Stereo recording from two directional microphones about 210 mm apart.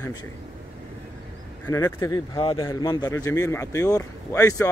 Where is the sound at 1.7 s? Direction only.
15° left (ahead or behind).